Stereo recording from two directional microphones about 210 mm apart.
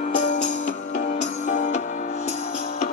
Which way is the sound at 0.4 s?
35° left (ahead or behind).